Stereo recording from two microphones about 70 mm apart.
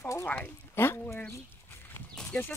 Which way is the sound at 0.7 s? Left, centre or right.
Left.